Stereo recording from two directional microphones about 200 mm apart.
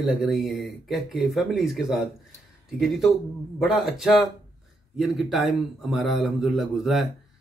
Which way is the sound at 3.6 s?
Centre (ahead or behind).